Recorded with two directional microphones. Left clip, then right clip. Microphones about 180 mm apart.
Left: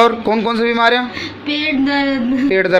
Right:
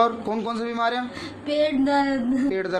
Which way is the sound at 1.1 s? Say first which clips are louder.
Left 4 dB; 55° right (ahead or behind).